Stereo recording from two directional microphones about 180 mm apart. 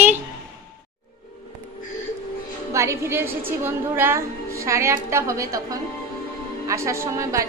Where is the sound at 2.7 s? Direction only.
15° right (ahead or behind).